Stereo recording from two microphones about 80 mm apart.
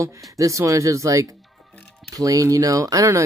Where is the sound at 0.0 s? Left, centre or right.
Right.